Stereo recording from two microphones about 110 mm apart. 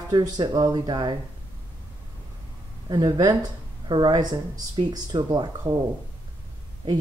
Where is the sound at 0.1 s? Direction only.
40° right (ahead or behind).